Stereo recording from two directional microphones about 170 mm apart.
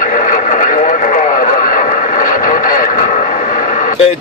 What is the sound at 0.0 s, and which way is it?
Radio, 50° left (ahead or behind).